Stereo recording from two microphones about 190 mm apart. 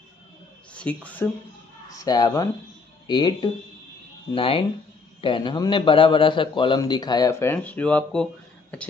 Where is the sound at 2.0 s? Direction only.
20° left (ahead or behind).